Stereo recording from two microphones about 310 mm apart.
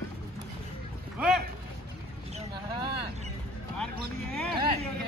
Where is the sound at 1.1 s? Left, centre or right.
Centre.